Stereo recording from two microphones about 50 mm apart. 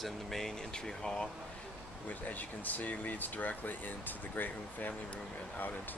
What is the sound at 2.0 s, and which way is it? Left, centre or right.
Speech, left.